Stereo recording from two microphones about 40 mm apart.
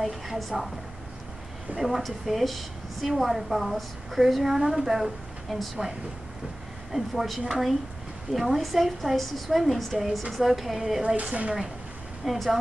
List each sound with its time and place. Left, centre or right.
0.0 s a woman's voice: centre
1.8 s a woman's voice: centre
6.9 s a woman's voice: centre
11.1 s a woman's voice: right
12.2 s a woman's voice: centre